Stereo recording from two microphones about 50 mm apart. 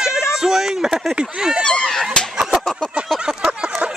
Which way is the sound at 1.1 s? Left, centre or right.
Centre.